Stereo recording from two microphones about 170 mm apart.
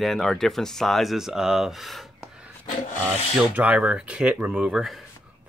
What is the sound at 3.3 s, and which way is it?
Speech, 5° right (ahead or behind).